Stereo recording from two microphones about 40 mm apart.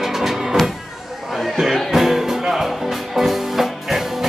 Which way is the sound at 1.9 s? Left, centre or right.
Centre.